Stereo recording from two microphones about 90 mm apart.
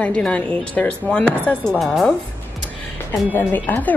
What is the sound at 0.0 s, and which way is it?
Speech, 15° left (ahead or behind).